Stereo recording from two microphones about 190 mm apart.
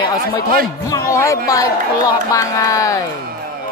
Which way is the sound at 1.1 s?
15° left (ahead or behind).